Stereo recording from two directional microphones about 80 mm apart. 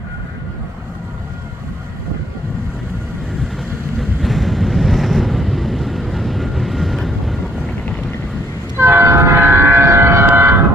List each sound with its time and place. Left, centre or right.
4.2 s vehicle: centre
7.6 s vehicle: centre
8.7 s train: right